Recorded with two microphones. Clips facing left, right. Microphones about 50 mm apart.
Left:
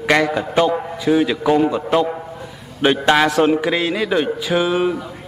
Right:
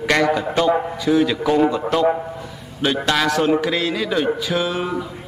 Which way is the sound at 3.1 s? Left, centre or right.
Left.